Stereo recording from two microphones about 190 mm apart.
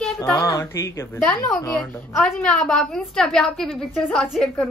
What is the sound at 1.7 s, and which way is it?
A woman's voice, 5° left (ahead or behind).